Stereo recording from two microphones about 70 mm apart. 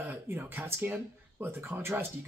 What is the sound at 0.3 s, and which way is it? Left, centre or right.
A man's voice, right.